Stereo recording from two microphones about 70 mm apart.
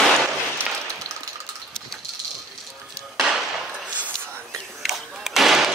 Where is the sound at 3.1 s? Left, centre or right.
Centre.